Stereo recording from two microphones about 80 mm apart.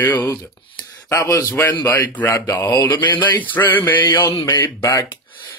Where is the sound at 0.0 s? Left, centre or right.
Left.